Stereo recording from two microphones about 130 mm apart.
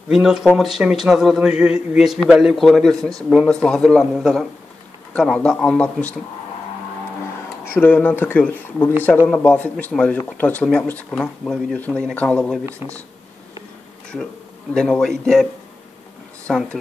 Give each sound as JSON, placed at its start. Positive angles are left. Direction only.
{"t": 0.1, "sound": "speech", "side_deg": -5}
{"t": 7.8, "sound": "speech", "side_deg": 15}
{"t": 12.6, "sound": "speech", "side_deg": -20}
{"t": 14.7, "sound": "speech", "side_deg": 5}
{"t": 16.4, "sound": "speech", "side_deg": 10}